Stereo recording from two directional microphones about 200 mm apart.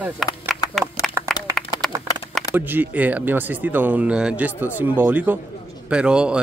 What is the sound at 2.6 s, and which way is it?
Speech, 10° right (ahead or behind).